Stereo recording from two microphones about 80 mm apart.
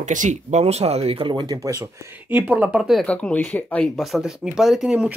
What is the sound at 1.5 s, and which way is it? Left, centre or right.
Speech, right.